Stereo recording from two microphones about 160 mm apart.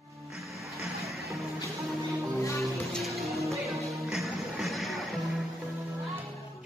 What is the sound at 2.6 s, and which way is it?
Music, centre (ahead or behind).